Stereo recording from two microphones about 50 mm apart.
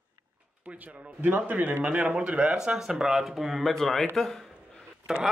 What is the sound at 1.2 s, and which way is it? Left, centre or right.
Speech, right.